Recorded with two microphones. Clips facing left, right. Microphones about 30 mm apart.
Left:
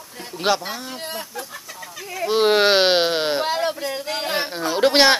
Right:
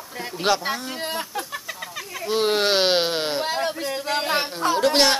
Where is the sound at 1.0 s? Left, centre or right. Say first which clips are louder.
Right 3 dB; right.